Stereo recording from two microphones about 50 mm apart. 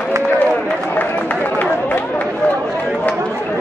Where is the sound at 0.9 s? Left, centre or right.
Left.